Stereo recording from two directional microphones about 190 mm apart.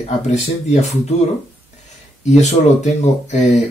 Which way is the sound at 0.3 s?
35° left (ahead or behind).